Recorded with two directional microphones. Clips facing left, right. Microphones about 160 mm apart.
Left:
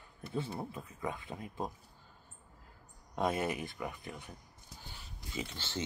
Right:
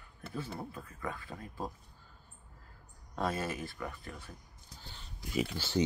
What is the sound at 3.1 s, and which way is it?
Speech, 20° left (ahead or behind).